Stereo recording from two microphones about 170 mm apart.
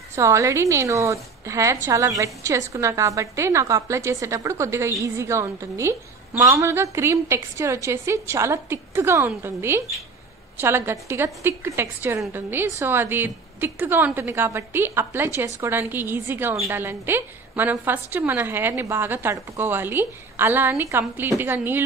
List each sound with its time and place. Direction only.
0.1 s a woman's voice: 15° right (ahead or behind)